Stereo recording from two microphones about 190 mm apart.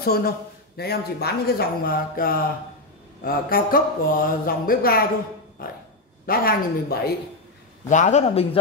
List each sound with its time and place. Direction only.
0.0 s a man's voice: 55° left (ahead or behind)
5.6 s a sound: 50° left (ahead or behind)
6.2 s speech: 50° left (ahead or behind)
7.9 s a man's voice: 40° left (ahead or behind)